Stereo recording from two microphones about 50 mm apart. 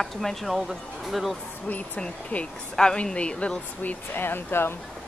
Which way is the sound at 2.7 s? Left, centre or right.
Centre.